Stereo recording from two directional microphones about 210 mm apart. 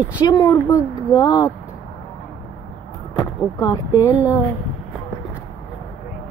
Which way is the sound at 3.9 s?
10° right (ahead or behind).